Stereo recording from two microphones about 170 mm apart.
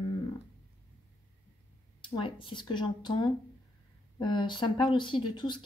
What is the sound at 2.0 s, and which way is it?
Speech, 30° left (ahead or behind).